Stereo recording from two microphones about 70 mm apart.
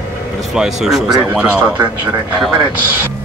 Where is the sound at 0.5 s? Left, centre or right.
Centre.